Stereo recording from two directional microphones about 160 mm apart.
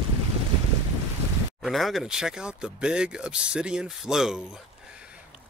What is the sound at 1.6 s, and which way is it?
Speech, centre (ahead or behind).